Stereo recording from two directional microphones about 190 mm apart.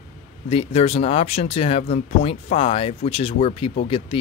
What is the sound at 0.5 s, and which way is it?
Speech, 30° left (ahead or behind).